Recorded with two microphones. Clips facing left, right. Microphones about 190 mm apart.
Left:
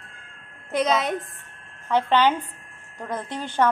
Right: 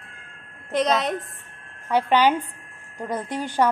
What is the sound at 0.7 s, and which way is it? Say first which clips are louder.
Speech: right 1 dB; centre (ahead or behind).